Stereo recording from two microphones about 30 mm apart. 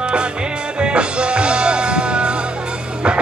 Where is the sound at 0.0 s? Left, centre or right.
Right.